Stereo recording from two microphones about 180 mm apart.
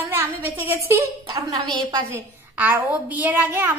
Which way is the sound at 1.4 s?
25° right (ahead or behind).